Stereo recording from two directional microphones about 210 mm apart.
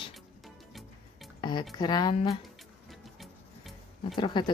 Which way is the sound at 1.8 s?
20° left (ahead or behind).